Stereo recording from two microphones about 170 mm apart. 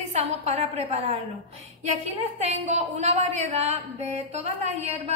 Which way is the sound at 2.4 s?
40° right (ahead or behind).